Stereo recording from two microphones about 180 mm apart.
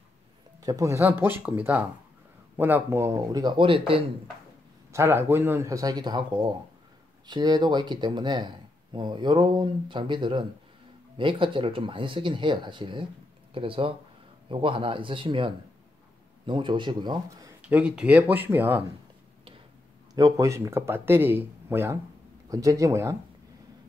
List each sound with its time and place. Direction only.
0.6 s speech: 20° right (ahead or behind)
4.9 s speech: 15° right (ahead or behind)
17.6 s speech: 5° right (ahead or behind)
20.2 s speech: 20° right (ahead or behind)